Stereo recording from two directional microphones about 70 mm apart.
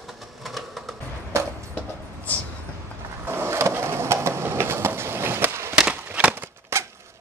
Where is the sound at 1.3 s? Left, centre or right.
Right.